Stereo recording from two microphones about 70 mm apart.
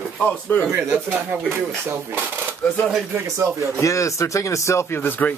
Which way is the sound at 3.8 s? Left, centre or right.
Left.